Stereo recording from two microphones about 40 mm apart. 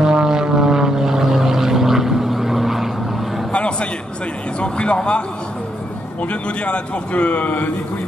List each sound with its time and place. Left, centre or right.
0.0 s vehicle: centre
3.5 s a sound: left
6.2 s a man's voice: left